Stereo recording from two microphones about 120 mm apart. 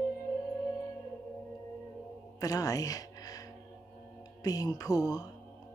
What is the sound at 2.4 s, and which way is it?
Speech, 30° left (ahead or behind).